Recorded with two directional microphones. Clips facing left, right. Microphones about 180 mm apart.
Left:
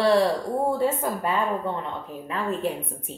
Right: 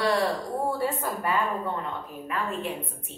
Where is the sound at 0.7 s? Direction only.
25° left (ahead or behind).